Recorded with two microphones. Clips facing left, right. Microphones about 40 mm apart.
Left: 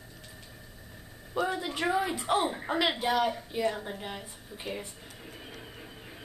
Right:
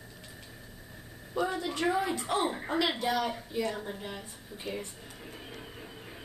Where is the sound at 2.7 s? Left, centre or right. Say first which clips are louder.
Left 1 dB; centre.